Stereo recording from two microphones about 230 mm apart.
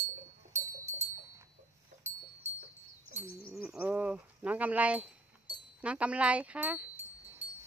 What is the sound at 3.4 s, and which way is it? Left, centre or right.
Bird, centre.